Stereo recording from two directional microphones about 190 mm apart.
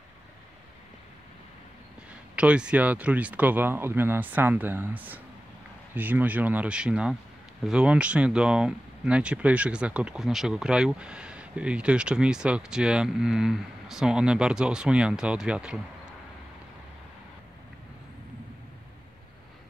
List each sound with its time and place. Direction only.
2.3 s speech: 5° right (ahead or behind)